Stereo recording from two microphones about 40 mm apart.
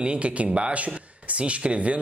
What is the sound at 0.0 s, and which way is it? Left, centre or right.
Speech, right.